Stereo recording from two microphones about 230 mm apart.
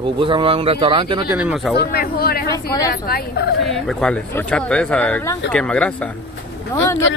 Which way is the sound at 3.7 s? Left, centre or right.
Centre.